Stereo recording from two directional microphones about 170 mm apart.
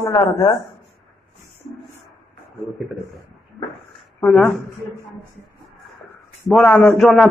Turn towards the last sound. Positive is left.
turn(degrees=0)  # may be behind; listen again after turning